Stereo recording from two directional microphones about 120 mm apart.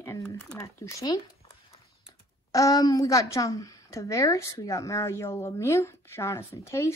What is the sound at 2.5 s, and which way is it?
A woman's voice, 30° left (ahead or behind).